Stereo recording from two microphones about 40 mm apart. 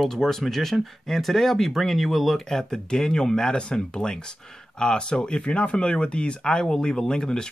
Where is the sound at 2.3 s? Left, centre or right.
Centre.